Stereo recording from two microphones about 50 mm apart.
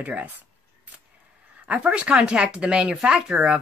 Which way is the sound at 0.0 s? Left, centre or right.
Right.